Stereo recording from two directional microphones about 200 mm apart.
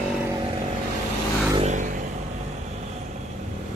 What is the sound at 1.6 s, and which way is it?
Vehicle, 35° right (ahead or behind).